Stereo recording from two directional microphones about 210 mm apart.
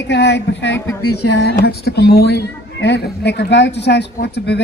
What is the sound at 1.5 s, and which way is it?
A man's voice, 50° left (ahead or behind).